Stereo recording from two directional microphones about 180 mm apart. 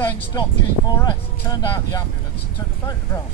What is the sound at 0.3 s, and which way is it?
Speech, 20° left (ahead or behind).